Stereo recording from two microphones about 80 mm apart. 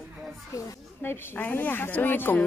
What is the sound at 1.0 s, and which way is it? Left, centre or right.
A woman's voice, left.